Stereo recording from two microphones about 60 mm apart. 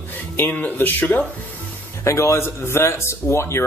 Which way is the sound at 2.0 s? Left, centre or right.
Left.